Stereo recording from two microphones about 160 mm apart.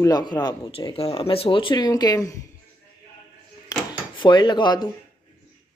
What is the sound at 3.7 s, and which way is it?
Drawer open or close, 25° left (ahead or behind).